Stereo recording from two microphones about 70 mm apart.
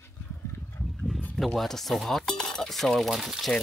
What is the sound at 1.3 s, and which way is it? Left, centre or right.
Stir, centre.